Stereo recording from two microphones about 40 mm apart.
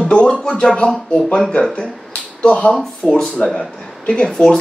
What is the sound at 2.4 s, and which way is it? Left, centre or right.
Speech, left.